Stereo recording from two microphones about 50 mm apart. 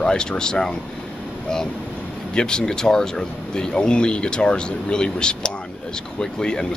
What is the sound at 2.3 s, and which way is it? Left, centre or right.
Speech, centre.